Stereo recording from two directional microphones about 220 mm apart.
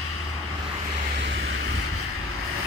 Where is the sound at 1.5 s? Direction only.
80° right.